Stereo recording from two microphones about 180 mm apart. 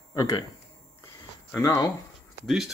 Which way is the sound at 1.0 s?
15° left (ahead or behind).